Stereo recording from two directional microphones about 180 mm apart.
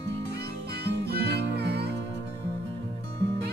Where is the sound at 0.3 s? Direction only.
65° right (ahead or behind).